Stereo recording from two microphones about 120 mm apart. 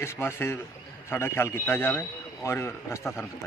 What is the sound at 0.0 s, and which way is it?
A man's voice, 20° left (ahead or behind).